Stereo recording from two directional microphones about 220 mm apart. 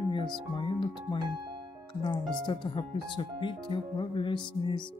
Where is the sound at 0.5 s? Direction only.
20° left (ahead or behind).